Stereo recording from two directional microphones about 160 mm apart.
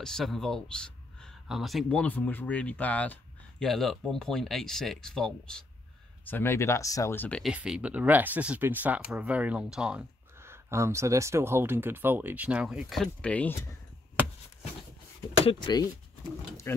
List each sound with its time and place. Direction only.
0.0 s speech: centre (ahead or behind)
7.5 s speech: 5° right (ahead or behind)
15.4 s speech: 25° left (ahead or behind)
16.7 s speech: 15° left (ahead or behind)